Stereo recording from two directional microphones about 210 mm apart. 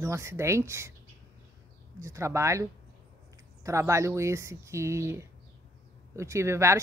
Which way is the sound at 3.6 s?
15° right (ahead or behind).